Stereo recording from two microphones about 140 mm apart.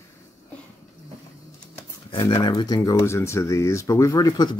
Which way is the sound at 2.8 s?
20° left (ahead or behind).